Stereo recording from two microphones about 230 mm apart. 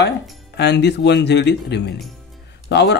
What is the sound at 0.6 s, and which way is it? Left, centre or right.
Speech, left.